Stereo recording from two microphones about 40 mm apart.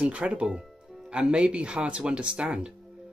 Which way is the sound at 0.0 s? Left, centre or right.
Right.